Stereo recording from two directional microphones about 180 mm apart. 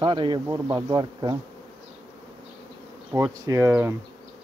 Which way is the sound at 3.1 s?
15° right (ahead or behind).